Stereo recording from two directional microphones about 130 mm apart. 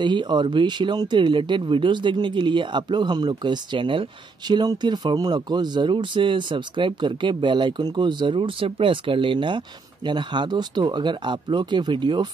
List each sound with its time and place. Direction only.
0.0 s speech: 35° right (ahead or behind)